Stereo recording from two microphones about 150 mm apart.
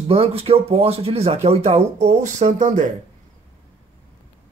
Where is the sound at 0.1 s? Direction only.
40° right (ahead or behind); by 2.9 s 55° right (ahead or behind).